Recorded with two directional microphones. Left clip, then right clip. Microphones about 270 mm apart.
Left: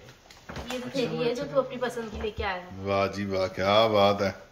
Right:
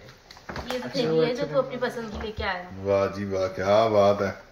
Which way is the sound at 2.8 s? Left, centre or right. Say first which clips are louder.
Right 3 dB; centre.